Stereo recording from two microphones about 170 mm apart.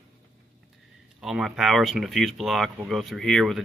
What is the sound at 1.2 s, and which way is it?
Speech, 5° right (ahead or behind).